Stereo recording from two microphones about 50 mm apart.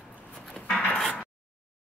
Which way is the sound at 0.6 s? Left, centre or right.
Centre.